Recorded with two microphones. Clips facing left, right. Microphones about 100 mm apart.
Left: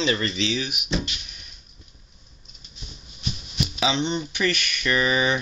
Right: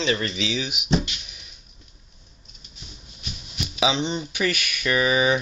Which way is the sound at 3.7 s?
10° right (ahead or behind).